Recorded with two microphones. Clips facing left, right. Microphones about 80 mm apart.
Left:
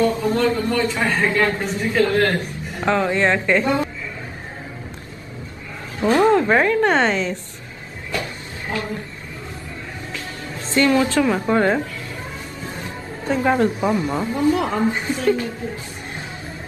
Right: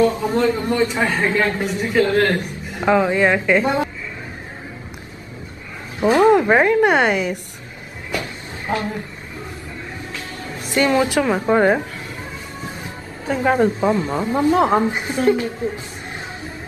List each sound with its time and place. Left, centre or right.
0.0 s a woman's voice: centre
5.9 s speech: centre
8.1 s a sound: right
10.6 s speech: centre
13.3 s a woman's voice: centre
13.7 s speech: centre
14.3 s speech: right